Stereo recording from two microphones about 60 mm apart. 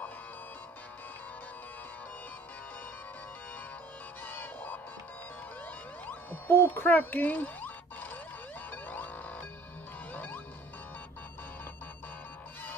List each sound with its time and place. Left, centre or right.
4.2 s music: left
6.0 s a sound: left
8.8 s music: left